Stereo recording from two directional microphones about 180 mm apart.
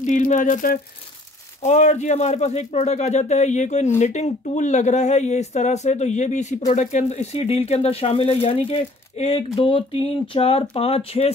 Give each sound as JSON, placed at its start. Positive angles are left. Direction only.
{"t": 0.0, "sound": "speech", "side_deg": 45}